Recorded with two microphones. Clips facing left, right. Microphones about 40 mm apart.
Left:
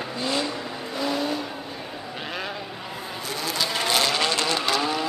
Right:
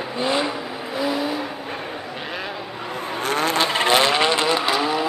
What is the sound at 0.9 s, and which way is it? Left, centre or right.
Vehicle, centre.